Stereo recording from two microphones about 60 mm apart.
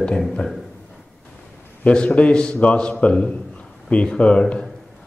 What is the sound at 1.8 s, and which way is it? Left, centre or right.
A man's voice, centre.